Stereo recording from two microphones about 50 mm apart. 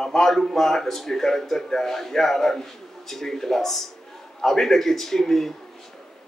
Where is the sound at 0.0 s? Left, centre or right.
Centre.